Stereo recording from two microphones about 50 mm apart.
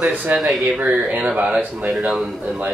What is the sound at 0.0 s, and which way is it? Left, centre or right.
Speech, right.